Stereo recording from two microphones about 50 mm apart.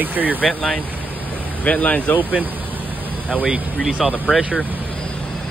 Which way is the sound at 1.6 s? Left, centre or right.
Left.